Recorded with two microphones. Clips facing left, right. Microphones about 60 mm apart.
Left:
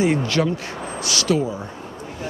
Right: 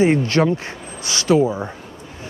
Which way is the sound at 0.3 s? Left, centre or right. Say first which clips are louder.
Right 3 dB; right.